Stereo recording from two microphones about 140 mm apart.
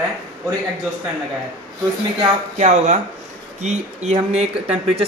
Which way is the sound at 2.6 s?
60° right (ahead or behind).